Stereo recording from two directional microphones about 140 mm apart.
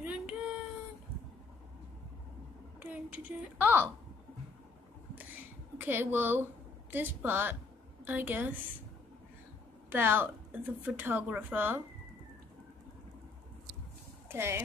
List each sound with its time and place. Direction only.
0.0 s a sound: 10° right (ahead or behind)
2.8 s a woman's voice: 10° right (ahead or behind)
5.8 s a woman's voice: 15° right (ahead or behind)
9.8 s a woman's voice: 15° right (ahead or behind)
14.3 s speech: 20° right (ahead or behind)